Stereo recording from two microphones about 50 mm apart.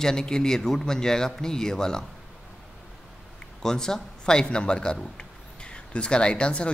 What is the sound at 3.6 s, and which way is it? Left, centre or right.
Speech, centre.